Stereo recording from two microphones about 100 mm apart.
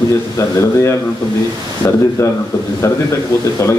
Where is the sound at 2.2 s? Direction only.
30° left (ahead or behind).